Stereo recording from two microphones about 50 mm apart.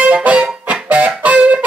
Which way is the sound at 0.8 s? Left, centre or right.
Right.